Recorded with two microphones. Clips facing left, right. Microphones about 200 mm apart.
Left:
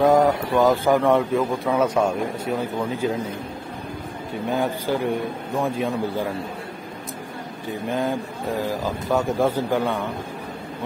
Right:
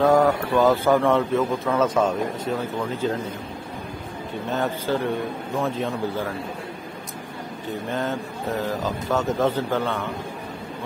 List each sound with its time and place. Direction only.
0.0 s a man's voice: 20° left (ahead or behind)
4.5 s a man's voice: 10° left (ahead or behind)
7.9 s a man's voice: 10° left (ahead or behind)